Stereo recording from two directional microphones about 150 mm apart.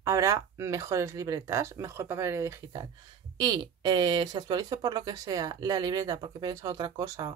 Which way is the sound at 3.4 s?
30° right (ahead or behind).